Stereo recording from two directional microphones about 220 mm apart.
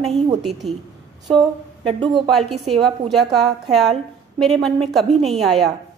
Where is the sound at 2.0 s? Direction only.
20° right (ahead or behind).